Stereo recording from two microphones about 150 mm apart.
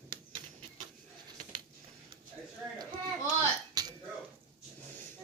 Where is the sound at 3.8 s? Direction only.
25° right (ahead or behind).